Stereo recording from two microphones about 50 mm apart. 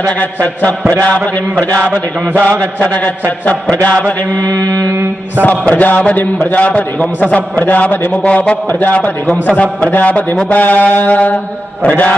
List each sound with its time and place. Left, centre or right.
0.2 s a man's voice: left